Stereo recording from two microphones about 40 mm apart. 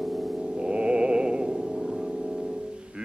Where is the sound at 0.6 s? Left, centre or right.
Right.